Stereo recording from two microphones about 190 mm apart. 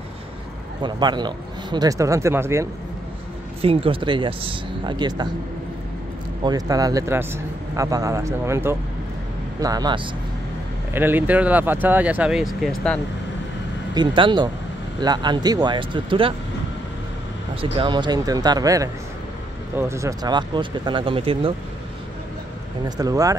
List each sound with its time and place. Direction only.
0.8 s speech: 25° right (ahead or behind)
3.6 s speech: 30° right (ahead or behind)
6.4 s speech: 20° right (ahead or behind)
10.9 s speech: 10° right (ahead or behind)
13.9 s speech: 25° right (ahead or behind)
17.7 s speech: 25° right (ahead or behind)
22.8 s speech: 20° right (ahead or behind)